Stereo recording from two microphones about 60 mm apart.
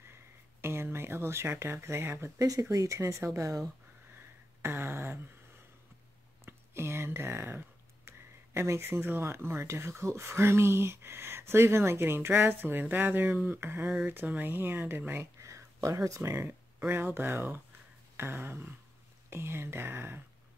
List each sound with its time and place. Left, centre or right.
0.1 s speech: right
2.3 s speech: right
2.7 s speech: right
4.6 s speech: right
6.4 s speech: right
13.7 s speech: right
15.4 s a sound: right
16.2 s speech: right
16.9 s speech: right